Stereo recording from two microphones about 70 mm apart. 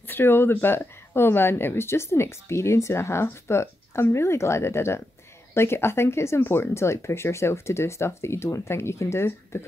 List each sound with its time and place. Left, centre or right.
0.1 s speech: left